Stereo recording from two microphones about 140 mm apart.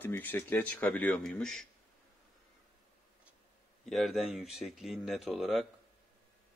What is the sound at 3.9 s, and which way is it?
Speech, centre (ahead or behind).